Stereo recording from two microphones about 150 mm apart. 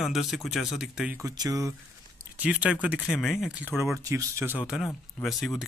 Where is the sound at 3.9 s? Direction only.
20° right (ahead or behind); by 5.7 s centre (ahead or behind).